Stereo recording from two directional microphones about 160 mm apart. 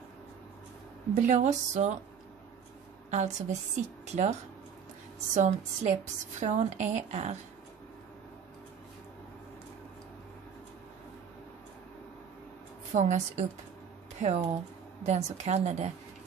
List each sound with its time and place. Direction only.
1.1 s a woman's voice: 50° right (ahead or behind)
3.1 s a woman's voice: 45° right (ahead or behind)
12.9 s a woman's voice: 45° right (ahead or behind)